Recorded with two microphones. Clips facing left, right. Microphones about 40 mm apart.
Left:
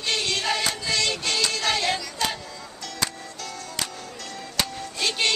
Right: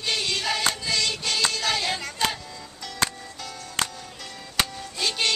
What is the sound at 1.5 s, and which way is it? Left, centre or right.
Child singing, centre.